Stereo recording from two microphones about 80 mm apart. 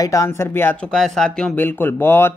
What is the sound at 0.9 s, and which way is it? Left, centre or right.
Speech, centre.